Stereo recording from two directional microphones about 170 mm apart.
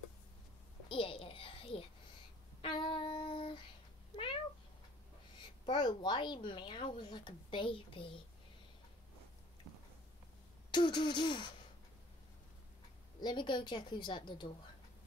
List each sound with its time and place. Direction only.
0.8 s a sound: 30° left (ahead or behind)
2.6 s child singing: 30° left (ahead or behind)
5.7 s speech: 25° left (ahead or behind)
10.7 s speech: 25° left (ahead or behind)
13.2 s speech: 25° left (ahead or behind)